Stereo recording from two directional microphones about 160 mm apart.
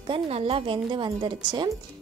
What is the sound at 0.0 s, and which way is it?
A woman's voice, 35° right (ahead or behind).